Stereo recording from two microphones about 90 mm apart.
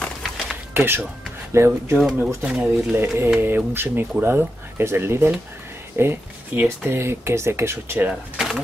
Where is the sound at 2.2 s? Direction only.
10° right (ahead or behind).